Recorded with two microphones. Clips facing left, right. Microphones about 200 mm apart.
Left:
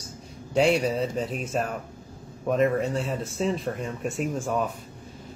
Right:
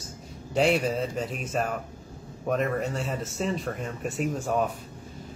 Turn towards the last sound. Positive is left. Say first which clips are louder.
# even
turn(degrees=0)  # may be behind; listen again after turning